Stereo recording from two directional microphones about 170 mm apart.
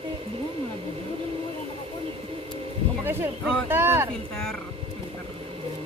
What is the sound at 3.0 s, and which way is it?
Speech, 15° right (ahead or behind).